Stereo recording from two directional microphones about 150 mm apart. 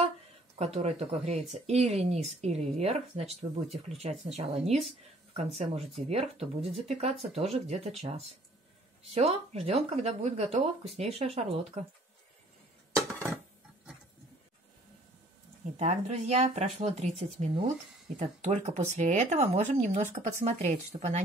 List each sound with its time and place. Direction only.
0.7 s speech: 45° right (ahead or behind)
9.1 s speech: 45° right (ahead or behind)
15.8 s speech: 45° right (ahead or behind)